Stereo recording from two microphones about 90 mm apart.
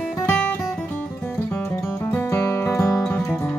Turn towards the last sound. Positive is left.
turn(degrees=30)  # may be behind; listen again after turning